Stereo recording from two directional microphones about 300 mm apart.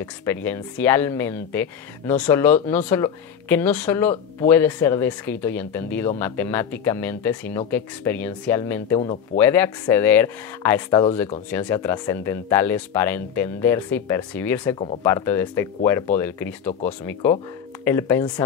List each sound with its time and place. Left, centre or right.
0.0 s speech: centre
9.4 s speech: centre